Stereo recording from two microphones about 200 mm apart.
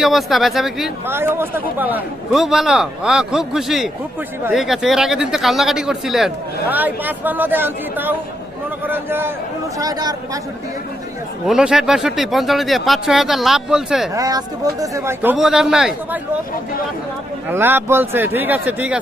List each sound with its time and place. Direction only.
0.0 s speech: centre (ahead or behind); by 10.4 s 20° right (ahead or behind)
11.4 s speech: 5° right (ahead or behind)
14.1 s speech: 15° right (ahead or behind)
15.3 s speech: centre (ahead or behind)
17.5 s speech: 10° right (ahead or behind)